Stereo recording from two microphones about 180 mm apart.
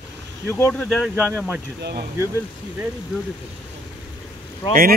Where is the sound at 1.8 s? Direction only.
60° right (ahead or behind).